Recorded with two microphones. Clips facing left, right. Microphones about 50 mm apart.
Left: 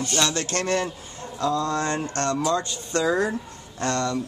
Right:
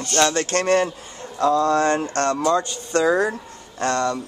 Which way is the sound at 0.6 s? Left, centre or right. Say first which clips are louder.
Right 6 dB; right.